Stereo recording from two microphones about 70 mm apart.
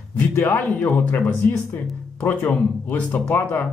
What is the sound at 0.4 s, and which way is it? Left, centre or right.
Speech, left.